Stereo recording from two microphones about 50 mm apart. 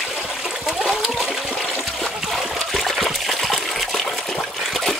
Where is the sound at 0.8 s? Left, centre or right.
Centre.